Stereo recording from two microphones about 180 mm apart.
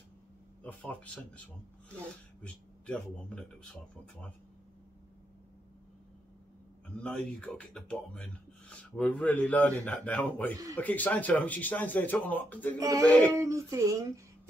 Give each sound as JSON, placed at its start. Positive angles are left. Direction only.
{"t": 0.7, "sound": "speech", "side_deg": 5}
{"t": 2.4, "sound": "speech", "side_deg": 5}
{"t": 7.0, "sound": "speech", "side_deg": 5}
{"t": 12.7, "sound": "speech", "side_deg": -20}
{"t": 13.0, "sound": "speech", "side_deg": 10}
{"t": 13.4, "sound": "speech", "side_deg": -15}